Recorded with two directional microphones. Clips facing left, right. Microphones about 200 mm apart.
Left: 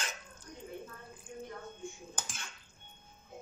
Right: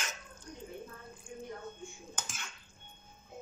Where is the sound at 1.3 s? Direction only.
20° left (ahead or behind).